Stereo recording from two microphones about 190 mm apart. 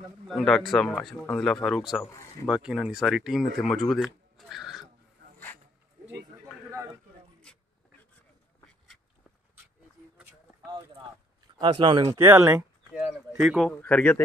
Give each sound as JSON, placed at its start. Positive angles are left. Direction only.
{"t": 0.3, "sound": "speech", "side_deg": 0}
{"t": 7.5, "sound": "a sound", "side_deg": 5}
{"t": 10.6, "sound": "clip-clop", "side_deg": -20}
{"t": 11.5, "sound": "speech", "side_deg": -25}
{"t": 12.1, "sound": "a sound", "side_deg": -15}
{"t": 13.7, "sound": "speech", "side_deg": 5}